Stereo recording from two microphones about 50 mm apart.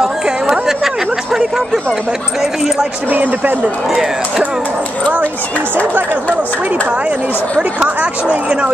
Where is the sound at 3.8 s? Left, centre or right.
Centre.